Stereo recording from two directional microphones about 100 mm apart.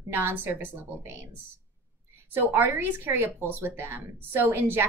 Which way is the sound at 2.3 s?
20° right (ahead or behind).